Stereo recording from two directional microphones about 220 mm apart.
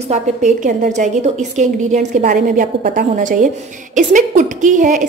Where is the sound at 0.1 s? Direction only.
35° right (ahead or behind).